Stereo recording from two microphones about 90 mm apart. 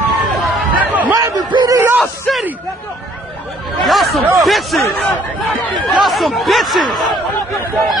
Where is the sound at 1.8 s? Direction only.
20° right (ahead or behind).